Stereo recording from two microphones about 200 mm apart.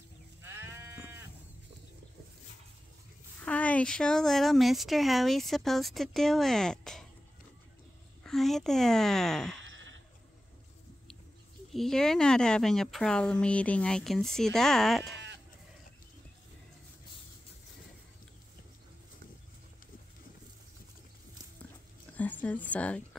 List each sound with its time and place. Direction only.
0.4 s sheep: 10° right (ahead or behind)
3.4 s speech: 5° left (ahead or behind)
8.2 s speech: centre (ahead or behind)
9.6 s sheep: 70° right (ahead or behind)
11.7 s speech: centre (ahead or behind)
22.1 s a sound: 10° left (ahead or behind)